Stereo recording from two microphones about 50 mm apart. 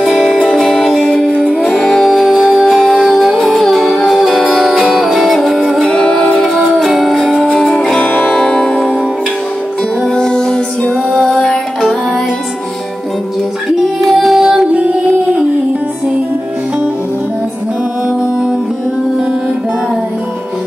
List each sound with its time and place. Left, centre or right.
0.0 s music: centre
1.0 s music: centre
1.9 s music: centre
5.9 s music: centre
6.5 s music: centre
7.3 s music: centre
8.2 s music: centre
10.0 s music: centre
14.0 s music: centre